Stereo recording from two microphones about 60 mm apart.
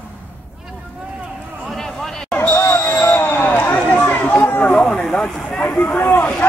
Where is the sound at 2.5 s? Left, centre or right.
Left.